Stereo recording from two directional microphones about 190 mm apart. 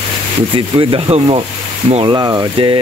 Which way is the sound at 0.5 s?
25° right (ahead or behind).